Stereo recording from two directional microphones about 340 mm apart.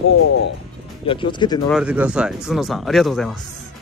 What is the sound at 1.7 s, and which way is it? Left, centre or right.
Speech, centre.